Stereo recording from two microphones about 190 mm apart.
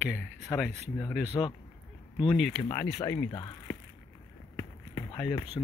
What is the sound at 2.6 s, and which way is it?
Speech, 15° left (ahead or behind).